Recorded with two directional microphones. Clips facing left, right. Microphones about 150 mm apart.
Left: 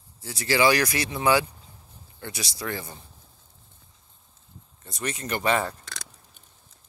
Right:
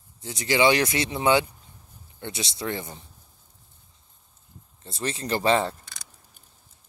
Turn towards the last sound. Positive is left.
turn(degrees=-25)  # may be behind; listen again after turning